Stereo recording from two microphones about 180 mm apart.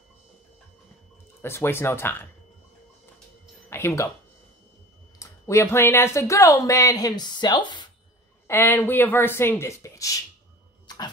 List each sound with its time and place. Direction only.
1.4 s speech: 15° left (ahead or behind)
3.7 s speech: 15° left (ahead or behind)
5.2 s speech: 15° left (ahead or behind)
8.5 s speech: 15° left (ahead or behind)